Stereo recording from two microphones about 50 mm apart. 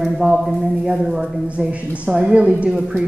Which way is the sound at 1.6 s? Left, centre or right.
Right.